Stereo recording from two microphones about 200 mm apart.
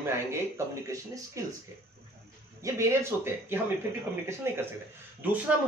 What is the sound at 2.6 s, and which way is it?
Speech, 10° right (ahead or behind).